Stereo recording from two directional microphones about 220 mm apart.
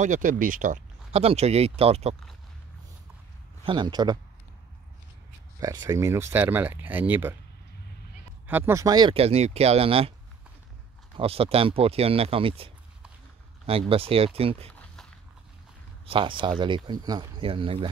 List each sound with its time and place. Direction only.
0.0 s speech: 35° right (ahead or behind)
3.6 s speech: 20° right (ahead or behind)
5.6 s speech: 15° right (ahead or behind)
8.5 s speech: 10° right (ahead or behind); by 10.1 s 25° right (ahead or behind)
11.1 s speech: 25° right (ahead or behind)
16.1 s speech: 25° right (ahead or behind)